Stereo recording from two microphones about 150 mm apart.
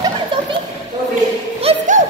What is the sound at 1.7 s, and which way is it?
Music, 40° right (ahead or behind).